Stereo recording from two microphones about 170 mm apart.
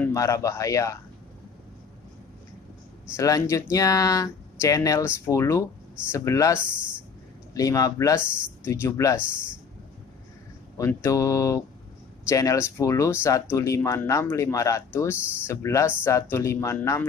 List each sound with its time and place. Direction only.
0.0 s speech: 20° left (ahead or behind)
3.2 s speech: 20° left (ahead or behind)
10.8 s speech: 15° left (ahead or behind)